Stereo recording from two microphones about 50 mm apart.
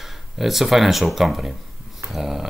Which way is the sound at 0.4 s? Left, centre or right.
Centre.